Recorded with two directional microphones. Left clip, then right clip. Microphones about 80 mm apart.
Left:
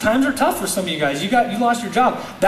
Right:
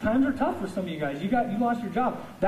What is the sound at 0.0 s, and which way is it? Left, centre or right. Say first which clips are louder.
Speech: left 8 dB; centre.